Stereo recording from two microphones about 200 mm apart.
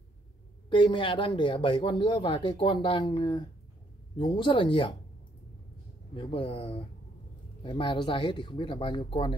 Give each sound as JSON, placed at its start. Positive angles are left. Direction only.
{"t": 0.7, "sound": "speech", "side_deg": 25}
{"t": 6.1, "sound": "speech", "side_deg": 25}